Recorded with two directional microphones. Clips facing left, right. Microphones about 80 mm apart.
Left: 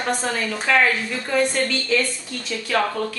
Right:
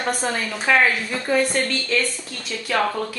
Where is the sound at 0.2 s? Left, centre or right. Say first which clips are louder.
Even; centre.